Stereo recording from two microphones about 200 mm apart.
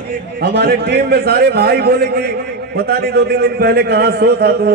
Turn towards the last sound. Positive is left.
turn(degrees=-55)  # may be behind; listen again after turning